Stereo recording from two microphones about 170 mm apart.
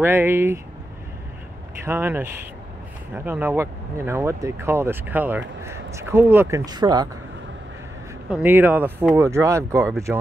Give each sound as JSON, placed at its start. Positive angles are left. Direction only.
{"t": 0.0, "sound": "speech", "side_deg": -15}
{"t": 1.9, "sound": "speech", "side_deg": -15}
{"t": 8.3, "sound": "speech", "side_deg": -10}